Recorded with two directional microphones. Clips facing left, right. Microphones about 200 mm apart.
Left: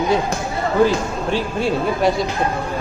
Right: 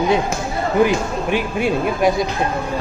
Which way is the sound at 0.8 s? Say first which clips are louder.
Even; 15° right (ahead or behind).